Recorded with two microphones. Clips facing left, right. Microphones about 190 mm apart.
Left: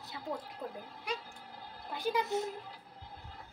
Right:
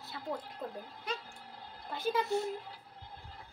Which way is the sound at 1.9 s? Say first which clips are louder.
Right 1 dB; 15° left (ahead or behind).